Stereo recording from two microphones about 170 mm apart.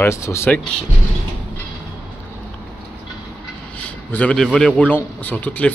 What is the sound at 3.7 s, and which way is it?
A man's voice, 10° left (ahead or behind).